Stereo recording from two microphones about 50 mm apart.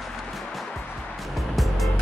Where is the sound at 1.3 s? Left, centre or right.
Centre.